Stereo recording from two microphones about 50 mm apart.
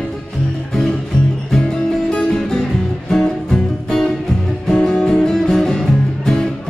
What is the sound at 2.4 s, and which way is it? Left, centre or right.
Music, centre.